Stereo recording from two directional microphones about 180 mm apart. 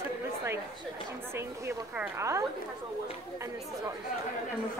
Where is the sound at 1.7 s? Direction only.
15° right (ahead or behind).